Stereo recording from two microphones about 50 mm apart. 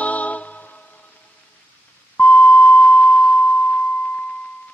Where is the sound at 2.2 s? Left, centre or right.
Left.